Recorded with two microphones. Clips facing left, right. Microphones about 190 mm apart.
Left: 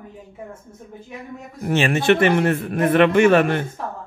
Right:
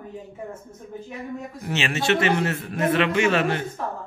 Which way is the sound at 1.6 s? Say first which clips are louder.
Left 7 dB; 50° left (ahead or behind).